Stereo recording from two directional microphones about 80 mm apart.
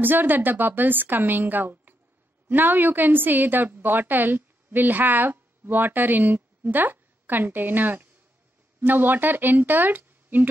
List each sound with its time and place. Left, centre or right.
0.0 s a woman's voice: right